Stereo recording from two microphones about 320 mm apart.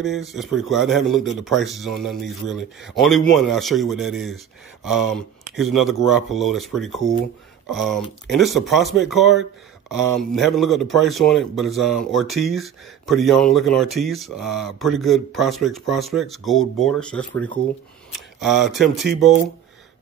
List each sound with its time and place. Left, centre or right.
0.0 s speech: centre